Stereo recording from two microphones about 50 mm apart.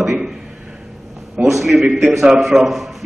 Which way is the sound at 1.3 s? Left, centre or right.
Centre.